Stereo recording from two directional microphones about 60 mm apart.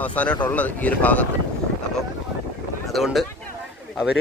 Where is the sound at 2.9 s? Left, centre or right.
Centre.